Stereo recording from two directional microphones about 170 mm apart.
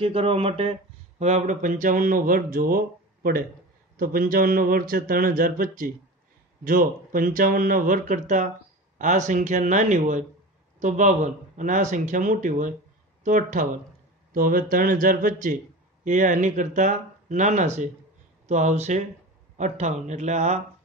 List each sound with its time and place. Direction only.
0.0 s a man's voice: 35° right (ahead or behind)